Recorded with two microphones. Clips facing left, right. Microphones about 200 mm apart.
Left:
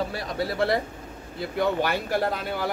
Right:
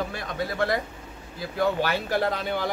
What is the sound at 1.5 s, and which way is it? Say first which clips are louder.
Speech: even; 15° left (ahead or behind).